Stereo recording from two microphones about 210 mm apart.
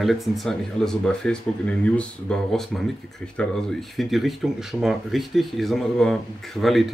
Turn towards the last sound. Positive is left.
turn(degrees=0)  # may be behind; listen again after turning